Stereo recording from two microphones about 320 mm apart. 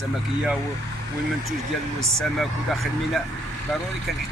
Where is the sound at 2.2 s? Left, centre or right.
Centre.